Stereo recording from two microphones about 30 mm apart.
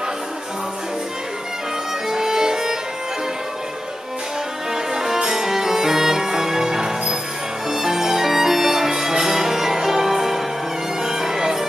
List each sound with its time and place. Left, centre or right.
2.0 s music: centre
4.9 s music: centre